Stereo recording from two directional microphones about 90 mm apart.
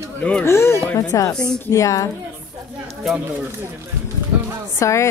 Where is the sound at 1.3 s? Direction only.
10° left (ahead or behind).